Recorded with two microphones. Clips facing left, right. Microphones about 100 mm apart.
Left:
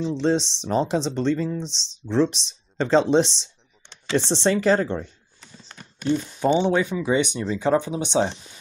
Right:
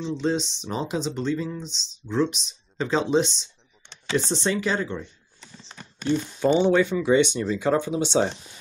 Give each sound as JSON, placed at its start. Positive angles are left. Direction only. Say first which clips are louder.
{"t": 0.0, "sound": "speech", "louder": "left 3 dB", "side_deg": 35}
{"t": 6.4, "sound": "speech", "louder": "right 1 dB", "side_deg": 20}